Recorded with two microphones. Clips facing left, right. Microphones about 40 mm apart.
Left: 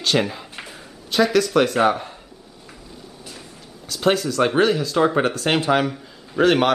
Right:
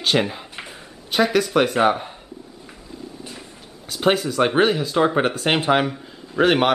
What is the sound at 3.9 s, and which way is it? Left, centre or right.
Speech, centre.